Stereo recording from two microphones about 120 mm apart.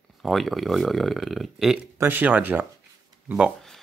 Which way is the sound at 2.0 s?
15° right (ahead or behind).